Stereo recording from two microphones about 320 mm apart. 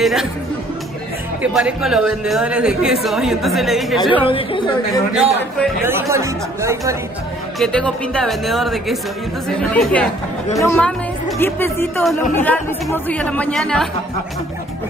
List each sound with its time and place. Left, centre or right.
0.0 s speech: centre
1.4 s speech: centre
4.1 s a woman's voice: centre
5.1 s speech: centre
7.5 s speech: centre